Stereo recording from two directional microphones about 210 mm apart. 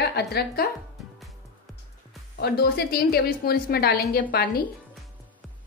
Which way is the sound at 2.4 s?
50° left (ahead or behind).